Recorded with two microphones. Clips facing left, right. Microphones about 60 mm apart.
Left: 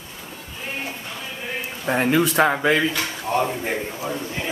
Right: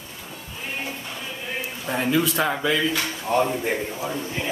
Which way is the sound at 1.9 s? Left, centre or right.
Left.